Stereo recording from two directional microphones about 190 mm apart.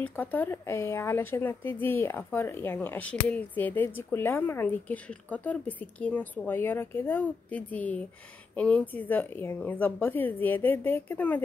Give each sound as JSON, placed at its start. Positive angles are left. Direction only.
{"t": 0.0, "sound": "speech", "side_deg": 10}